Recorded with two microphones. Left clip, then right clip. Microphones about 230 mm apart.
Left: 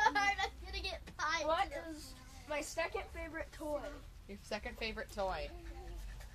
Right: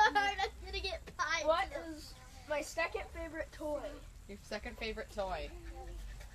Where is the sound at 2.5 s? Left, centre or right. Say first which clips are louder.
Right 2 dB; centre.